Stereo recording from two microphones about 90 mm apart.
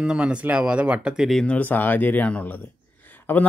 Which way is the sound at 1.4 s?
15° left (ahead or behind).